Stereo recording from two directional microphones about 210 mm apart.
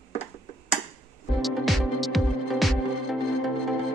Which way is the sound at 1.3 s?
Centre (ahead or behind).